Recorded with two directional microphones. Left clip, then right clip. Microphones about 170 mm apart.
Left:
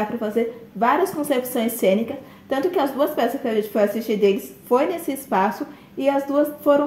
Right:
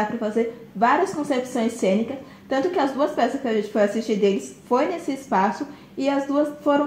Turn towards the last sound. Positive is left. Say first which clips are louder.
# left 3 dB
turn(degrees=25)  # may be behind; listen again after turning